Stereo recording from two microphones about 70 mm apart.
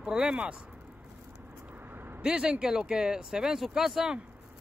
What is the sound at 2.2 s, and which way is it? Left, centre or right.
Speech, centre.